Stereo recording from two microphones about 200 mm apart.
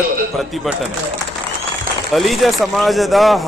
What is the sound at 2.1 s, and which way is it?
A man's voice, centre (ahead or behind).